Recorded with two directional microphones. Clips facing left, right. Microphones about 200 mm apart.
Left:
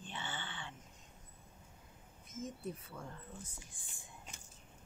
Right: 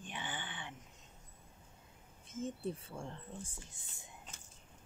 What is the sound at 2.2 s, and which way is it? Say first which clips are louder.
Speech: right 4 dB; 30° right (ahead or behind).